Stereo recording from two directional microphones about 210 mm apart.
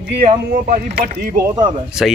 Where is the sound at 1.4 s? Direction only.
15° right (ahead or behind).